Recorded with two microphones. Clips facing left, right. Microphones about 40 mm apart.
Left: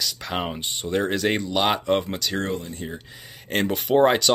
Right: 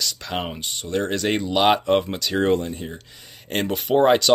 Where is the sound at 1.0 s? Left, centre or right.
Centre.